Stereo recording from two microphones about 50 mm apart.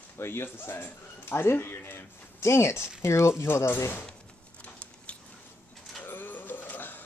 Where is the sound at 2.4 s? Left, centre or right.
Left.